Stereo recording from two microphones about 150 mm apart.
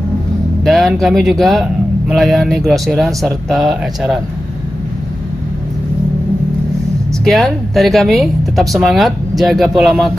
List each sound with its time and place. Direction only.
0.7 s speech: centre (ahead or behind)
7.2 s speech: centre (ahead or behind)